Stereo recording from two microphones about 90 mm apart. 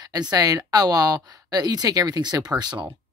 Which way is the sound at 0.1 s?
45° right (ahead or behind).